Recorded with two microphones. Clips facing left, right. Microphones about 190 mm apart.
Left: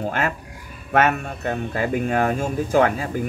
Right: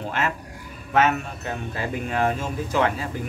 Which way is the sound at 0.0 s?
45° left (ahead or behind).